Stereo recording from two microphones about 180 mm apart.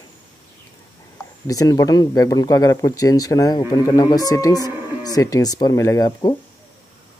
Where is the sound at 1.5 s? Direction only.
20° left (ahead or behind).